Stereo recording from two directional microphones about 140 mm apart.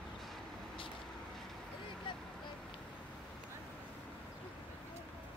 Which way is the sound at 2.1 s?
35° left (ahead or behind).